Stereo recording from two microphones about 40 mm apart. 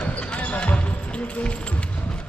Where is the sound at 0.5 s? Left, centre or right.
Left.